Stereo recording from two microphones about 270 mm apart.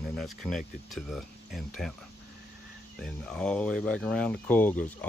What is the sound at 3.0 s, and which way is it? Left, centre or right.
Speech, centre.